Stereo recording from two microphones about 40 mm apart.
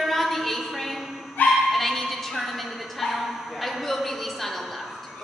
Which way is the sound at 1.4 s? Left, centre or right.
Left.